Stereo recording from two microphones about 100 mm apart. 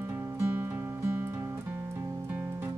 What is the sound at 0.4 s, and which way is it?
Music, 20° right (ahead or behind).